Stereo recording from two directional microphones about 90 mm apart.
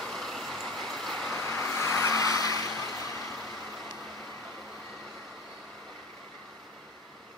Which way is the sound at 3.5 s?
Centre (ahead or behind).